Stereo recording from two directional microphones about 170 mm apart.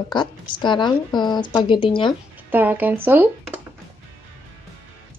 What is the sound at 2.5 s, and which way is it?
Speech, 10° right (ahead or behind).